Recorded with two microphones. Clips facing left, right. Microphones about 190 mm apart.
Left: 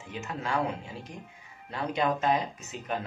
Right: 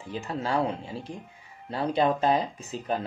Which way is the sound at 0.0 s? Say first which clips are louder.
Right 4 dB; 35° right (ahead or behind).